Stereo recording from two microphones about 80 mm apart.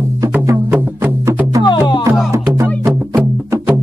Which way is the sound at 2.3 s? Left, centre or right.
Right.